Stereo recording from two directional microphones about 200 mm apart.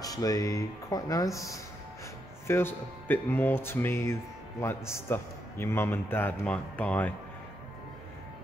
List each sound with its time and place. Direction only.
0.0 s speech: 20° left (ahead or behind)
2.4 s speech: 10° left (ahead or behind)